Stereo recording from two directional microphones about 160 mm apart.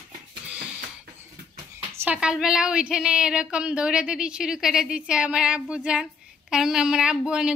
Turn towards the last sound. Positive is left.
turn(degrees=-5)  # may be behind; listen again after turning